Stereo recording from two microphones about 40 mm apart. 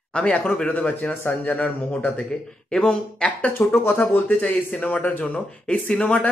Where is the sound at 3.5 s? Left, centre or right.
Left.